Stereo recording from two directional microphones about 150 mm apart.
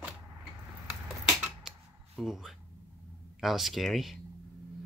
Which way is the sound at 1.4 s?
Centre (ahead or behind).